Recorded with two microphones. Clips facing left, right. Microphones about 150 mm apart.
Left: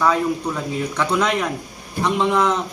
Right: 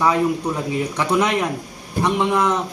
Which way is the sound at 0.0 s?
15° right (ahead or behind).